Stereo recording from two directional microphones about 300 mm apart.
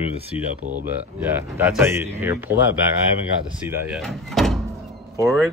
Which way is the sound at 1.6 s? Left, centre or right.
Centre.